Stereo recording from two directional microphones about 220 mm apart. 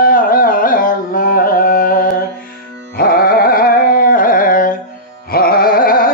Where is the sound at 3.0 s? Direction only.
40° left (ahead or behind).